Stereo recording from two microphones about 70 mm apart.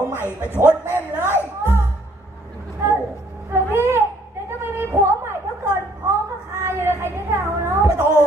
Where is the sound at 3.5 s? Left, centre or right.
Right.